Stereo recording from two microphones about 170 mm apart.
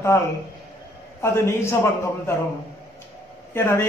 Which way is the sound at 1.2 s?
15° left (ahead or behind).